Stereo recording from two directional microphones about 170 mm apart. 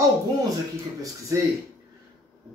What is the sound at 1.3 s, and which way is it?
Speech, 20° right (ahead or behind).